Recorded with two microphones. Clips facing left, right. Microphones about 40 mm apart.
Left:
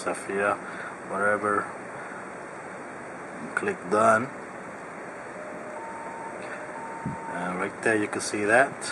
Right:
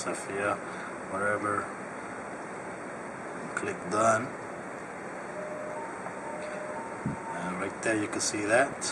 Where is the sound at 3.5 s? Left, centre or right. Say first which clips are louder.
Left 6 dB; centre.